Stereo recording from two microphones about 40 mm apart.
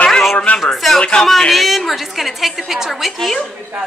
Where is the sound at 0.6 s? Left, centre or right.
Centre.